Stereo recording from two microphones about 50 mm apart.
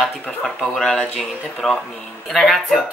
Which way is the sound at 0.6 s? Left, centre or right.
Centre.